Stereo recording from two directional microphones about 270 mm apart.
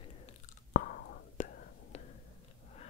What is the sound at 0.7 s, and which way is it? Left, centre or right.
Whispering, left.